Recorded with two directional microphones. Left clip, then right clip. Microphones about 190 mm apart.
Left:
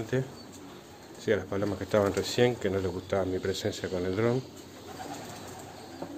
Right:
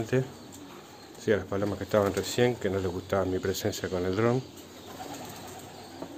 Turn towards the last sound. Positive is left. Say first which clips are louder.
# right 1 dB
turn(degrees=-15)  # may be behind; listen again after turning